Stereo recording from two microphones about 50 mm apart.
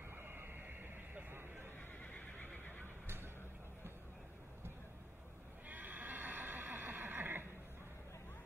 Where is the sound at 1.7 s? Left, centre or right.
Left.